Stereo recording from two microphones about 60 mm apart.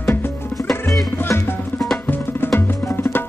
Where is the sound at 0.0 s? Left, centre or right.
Left.